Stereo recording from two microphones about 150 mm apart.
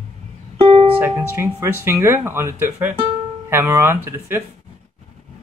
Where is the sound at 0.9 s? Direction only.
15° right (ahead or behind).